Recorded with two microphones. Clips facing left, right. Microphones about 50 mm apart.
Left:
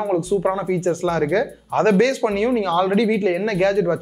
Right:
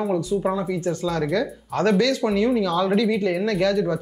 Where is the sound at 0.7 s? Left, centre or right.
Left.